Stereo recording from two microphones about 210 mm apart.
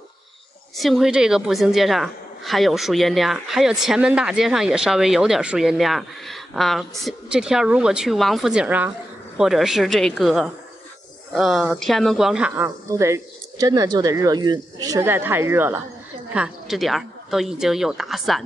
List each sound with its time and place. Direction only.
0.7 s a woman's voice: centre (ahead or behind)